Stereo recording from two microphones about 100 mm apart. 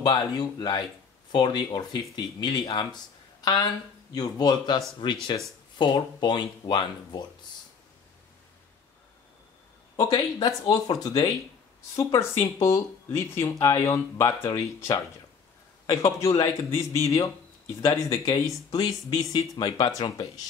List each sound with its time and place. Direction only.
0.0 s speech: 45° left (ahead or behind)
9.9 s speech: 40° left (ahead or behind)